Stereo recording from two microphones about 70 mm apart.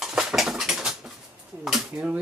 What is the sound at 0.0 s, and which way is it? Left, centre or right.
Dog, centre.